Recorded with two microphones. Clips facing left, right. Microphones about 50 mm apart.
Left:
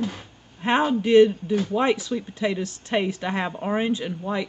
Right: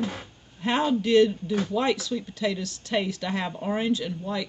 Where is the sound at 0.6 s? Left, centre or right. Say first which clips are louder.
Left 3 dB; left.